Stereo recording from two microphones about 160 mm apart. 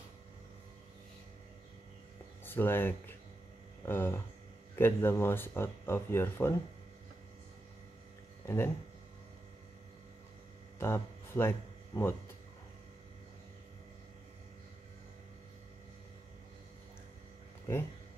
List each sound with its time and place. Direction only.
2.4 s speech: 15° left (ahead or behind)
8.5 s speech: 15° left (ahead or behind)
10.8 s speech: 15° left (ahead or behind)